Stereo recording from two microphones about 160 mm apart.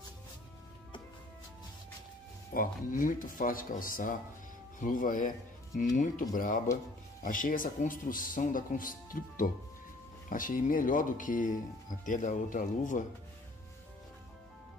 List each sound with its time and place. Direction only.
2.5 s speech: 60° left (ahead or behind)